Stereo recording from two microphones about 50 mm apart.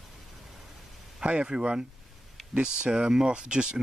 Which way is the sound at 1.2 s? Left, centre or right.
Centre.